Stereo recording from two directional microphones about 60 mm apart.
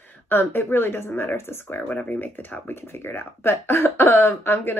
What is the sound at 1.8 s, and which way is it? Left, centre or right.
Speech, left.